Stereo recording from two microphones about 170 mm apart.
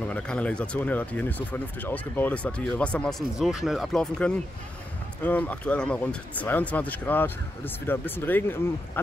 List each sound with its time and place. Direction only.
0.1 s speech: 5° left (ahead or behind)